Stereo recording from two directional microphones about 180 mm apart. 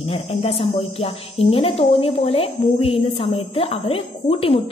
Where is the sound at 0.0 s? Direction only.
35° left (ahead or behind).